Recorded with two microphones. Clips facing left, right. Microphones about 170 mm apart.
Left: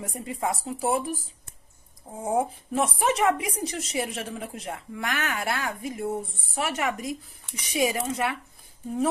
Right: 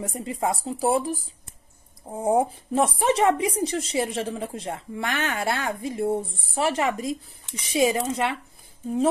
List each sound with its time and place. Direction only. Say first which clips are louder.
0.0 s speech: right 3 dB; 25° right (ahead or behind)
2.0 s speech: right 4 dB; 35° right (ahead or behind)